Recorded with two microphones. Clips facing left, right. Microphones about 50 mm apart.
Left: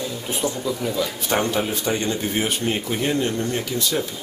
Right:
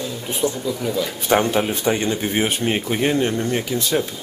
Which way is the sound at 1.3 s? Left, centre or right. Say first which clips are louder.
Right 5 dB; right.